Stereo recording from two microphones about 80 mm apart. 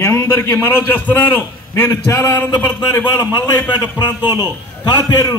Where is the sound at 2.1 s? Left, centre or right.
Left.